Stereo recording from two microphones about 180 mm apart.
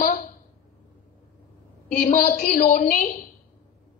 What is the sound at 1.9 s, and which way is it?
A woman's voice, 55° left (ahead or behind).